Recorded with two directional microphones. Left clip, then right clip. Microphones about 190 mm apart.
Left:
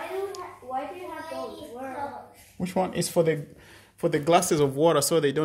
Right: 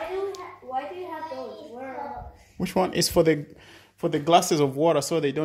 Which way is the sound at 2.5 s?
25° right (ahead or behind).